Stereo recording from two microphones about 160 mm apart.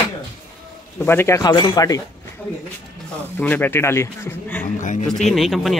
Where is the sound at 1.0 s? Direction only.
15° left (ahead or behind).